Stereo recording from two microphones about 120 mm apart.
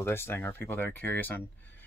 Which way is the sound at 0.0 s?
20° left (ahead or behind).